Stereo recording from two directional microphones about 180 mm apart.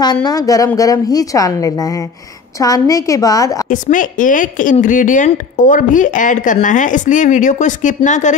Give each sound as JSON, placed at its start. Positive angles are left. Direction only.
{"t": 0.0, "sound": "a woman's voice", "side_deg": 20}
{"t": 3.6, "sound": "speech", "side_deg": 45}